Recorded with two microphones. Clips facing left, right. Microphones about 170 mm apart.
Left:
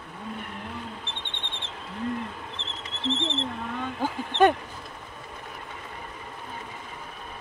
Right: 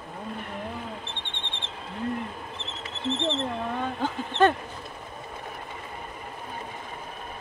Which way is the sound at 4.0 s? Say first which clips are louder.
Left 2 dB; 10° left (ahead or behind).